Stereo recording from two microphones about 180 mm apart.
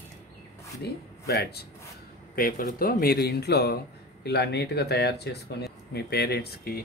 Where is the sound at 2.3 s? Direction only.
55° left (ahead or behind).